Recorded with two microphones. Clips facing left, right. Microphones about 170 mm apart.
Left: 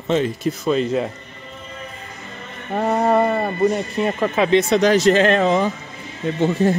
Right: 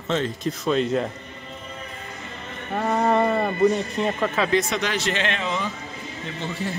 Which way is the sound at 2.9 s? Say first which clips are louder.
Left 3 dB; 15° left (ahead or behind).